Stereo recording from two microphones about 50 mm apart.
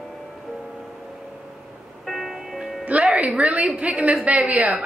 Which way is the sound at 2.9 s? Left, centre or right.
Right.